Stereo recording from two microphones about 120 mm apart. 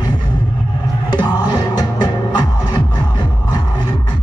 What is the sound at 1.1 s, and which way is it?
Music, 35° left (ahead or behind).